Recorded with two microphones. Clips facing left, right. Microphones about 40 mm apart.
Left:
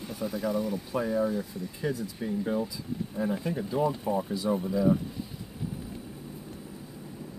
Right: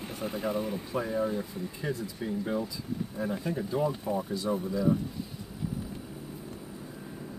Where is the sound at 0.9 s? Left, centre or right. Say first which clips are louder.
Left 3 dB; centre.